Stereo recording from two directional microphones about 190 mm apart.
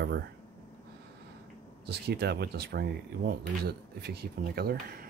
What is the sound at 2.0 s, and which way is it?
Speech, 60° right (ahead or behind).